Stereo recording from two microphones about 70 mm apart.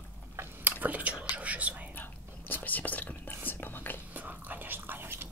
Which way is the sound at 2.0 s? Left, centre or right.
Left.